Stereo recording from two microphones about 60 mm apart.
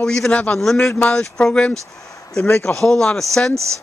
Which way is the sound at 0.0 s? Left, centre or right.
Centre.